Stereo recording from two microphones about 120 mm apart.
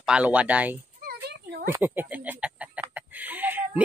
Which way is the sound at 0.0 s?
10° right (ahead or behind).